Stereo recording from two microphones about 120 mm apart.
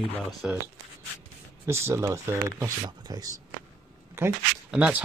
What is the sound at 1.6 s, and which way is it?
Speech, 20° right (ahead or behind).